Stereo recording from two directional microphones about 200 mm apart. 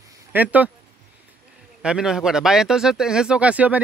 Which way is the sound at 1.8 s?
5° right (ahead or behind).